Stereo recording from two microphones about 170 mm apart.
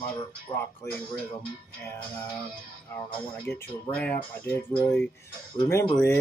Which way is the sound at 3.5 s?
5° left (ahead or behind).